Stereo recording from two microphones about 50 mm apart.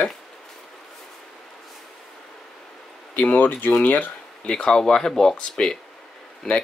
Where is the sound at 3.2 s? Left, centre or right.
Left.